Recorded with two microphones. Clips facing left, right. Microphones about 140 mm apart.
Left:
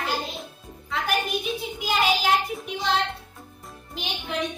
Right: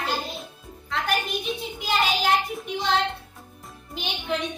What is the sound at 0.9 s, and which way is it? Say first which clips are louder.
A woman's voice: even; centre (ahead or behind).